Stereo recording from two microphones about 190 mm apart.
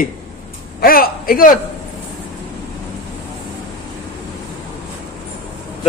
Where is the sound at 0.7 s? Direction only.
50° left (ahead or behind).